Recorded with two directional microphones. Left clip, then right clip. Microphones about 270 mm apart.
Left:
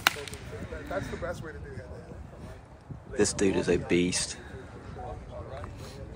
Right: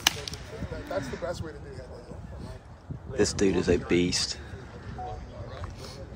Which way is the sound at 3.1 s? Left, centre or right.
Centre.